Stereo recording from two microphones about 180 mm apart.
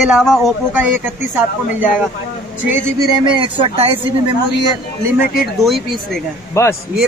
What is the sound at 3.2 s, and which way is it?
Speech, 25° right (ahead or behind).